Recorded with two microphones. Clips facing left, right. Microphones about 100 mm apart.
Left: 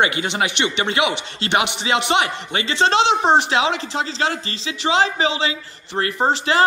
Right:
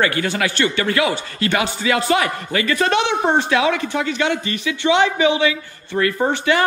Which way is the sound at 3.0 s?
90° left.